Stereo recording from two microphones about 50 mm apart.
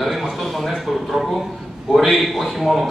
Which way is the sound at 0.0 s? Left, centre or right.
Centre.